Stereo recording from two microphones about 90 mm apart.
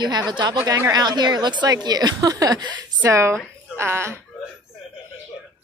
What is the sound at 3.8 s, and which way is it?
Speech, 30° right (ahead or behind).